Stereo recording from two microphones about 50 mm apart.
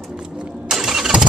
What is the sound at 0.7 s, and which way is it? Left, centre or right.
Vehicle, centre.